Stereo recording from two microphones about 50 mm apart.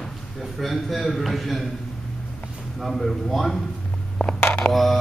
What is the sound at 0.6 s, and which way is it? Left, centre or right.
Speech, centre.